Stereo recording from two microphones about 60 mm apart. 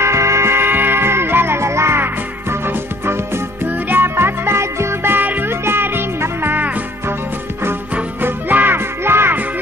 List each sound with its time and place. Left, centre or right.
0.0 s music: right
3.6 s music: right
5.1 s music: right
8.2 s music: right